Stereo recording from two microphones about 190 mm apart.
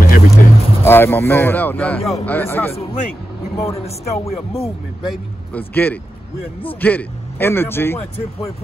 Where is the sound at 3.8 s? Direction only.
35° left (ahead or behind).